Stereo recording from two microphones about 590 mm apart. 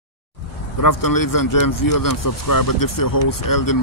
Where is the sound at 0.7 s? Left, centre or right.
Left.